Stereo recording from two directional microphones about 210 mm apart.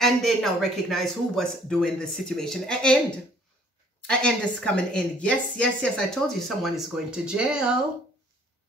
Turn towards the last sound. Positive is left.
turn(degrees=-5)  # may be behind; listen again after turning